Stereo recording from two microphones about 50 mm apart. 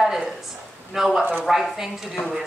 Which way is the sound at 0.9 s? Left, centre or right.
Centre.